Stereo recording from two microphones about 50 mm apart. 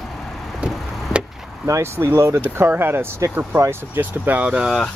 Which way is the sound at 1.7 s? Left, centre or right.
Right.